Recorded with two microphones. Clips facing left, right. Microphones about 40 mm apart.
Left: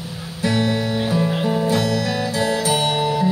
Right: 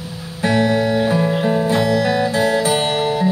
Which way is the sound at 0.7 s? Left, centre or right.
Centre.